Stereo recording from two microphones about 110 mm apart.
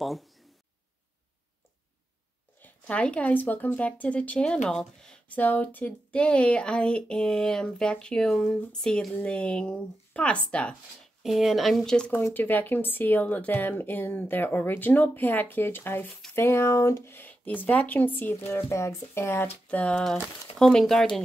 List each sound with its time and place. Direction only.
0.0 s a sound: centre (ahead or behind)
2.6 s speech: 10° left (ahead or behind)
11.2 s speech: centre (ahead or behind)
12.1 s speech: 25° left (ahead or behind)
19.7 s speech: 10° left (ahead or behind)